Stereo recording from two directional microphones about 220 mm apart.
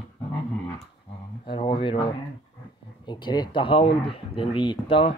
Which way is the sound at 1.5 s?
20° left (ahead or behind).